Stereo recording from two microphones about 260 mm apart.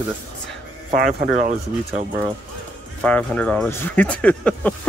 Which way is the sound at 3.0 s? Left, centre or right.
Centre.